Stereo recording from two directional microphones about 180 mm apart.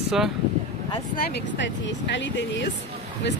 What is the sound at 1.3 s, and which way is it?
Speech, 85° left.